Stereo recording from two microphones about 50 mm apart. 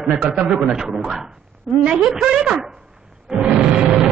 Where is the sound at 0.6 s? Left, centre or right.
Centre.